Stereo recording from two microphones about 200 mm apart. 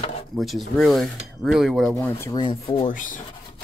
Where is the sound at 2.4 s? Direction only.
25° left (ahead or behind).